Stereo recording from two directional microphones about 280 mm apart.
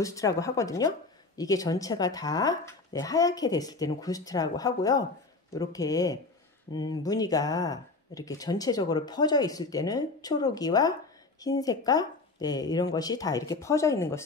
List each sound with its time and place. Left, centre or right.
0.0 s speech: centre